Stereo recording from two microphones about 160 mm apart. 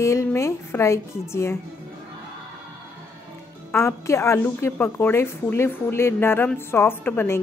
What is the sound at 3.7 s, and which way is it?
A woman's voice, 20° left (ahead or behind).